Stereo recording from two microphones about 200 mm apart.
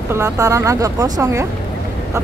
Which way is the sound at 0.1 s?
15° right (ahead or behind).